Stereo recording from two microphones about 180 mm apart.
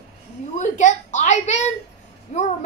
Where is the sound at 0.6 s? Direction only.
40° left (ahead or behind).